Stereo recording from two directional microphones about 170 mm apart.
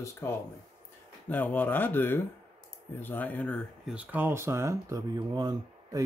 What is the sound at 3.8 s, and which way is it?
Speech, 10° right (ahead or behind).